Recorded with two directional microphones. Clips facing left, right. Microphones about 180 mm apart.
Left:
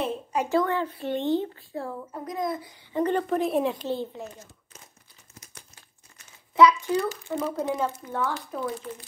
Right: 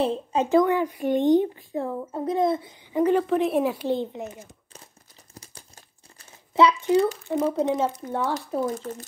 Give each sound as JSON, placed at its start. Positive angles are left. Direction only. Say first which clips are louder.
{"t": 0.0, "sound": "a woman's voice", "louder": "right 4 dB", "side_deg": -25}
{"t": 2.9, "sound": "a woman's voice", "louder": "right 4 dB", "side_deg": -10}
{"t": 3.8, "sound": "a woman's voice", "louder": "right 4 dB", "side_deg": -20}
{"t": 5.3, "sound": "crumpling", "louder": "right 5 dB", "side_deg": -30}
{"t": 6.1, "sound": "a sound", "louder": "even", "side_deg": -30}
{"t": 7.2, "sound": "a woman's voice", "louder": "right 5 dB", "side_deg": -25}
{"t": 8.3, "sound": "speech", "louder": "right 5 dB", "side_deg": -40}